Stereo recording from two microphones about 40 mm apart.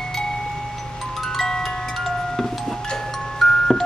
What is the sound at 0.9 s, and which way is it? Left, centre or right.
Music, centre.